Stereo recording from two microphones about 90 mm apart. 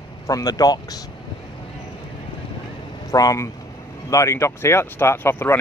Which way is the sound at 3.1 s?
40° left (ahead or behind).